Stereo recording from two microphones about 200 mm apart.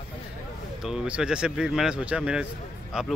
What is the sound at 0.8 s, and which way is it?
Speech, 5° right (ahead or behind).